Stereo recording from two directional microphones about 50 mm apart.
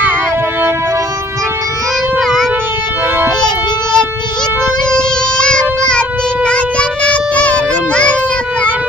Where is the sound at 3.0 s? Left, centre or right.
Right.